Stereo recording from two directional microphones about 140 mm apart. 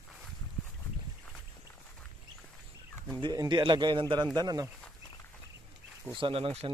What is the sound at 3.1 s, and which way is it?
A man's voice, 25° right (ahead or behind).